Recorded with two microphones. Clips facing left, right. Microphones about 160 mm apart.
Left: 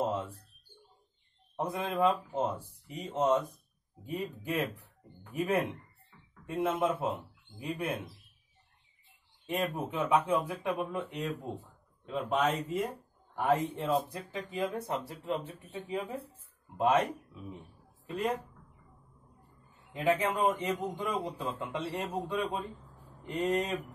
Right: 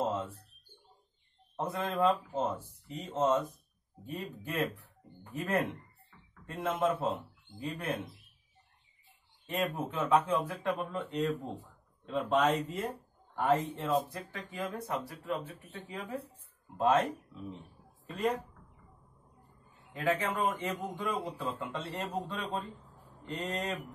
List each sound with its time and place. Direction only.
0.0 s a sound: 15° left (ahead or behind)
1.6 s speech: 15° left (ahead or behind)
9.5 s speech: 15° left (ahead or behind)
12.1 s speech: 10° left (ahead or behind)
18.0 s speech: 5° left (ahead or behind)
19.9 s speech: 15° left (ahead or behind)